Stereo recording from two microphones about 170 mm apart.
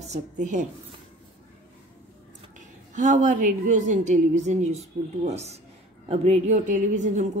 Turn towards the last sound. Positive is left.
turn(degrees=-45)  # may be behind; listen again after turning